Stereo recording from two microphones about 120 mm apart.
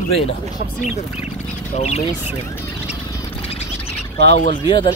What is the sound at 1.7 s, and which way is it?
Speech, 65° left (ahead or behind).